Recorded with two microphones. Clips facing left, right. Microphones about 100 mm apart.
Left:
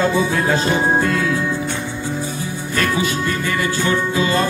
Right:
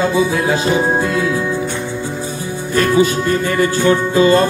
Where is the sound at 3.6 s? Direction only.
35° right (ahead or behind).